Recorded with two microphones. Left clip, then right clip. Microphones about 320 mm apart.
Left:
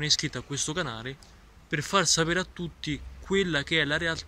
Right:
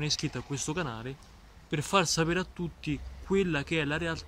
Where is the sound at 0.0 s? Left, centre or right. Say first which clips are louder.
Left 6 dB; centre.